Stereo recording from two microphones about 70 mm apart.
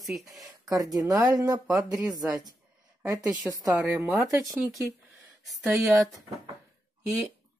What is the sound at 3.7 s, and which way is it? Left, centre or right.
Speech, right.